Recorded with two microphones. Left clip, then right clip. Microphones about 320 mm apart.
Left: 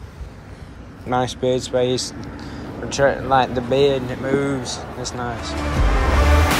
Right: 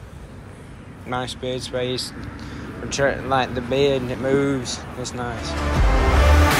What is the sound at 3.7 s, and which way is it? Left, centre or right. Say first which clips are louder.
Speech: left 1 dB; left.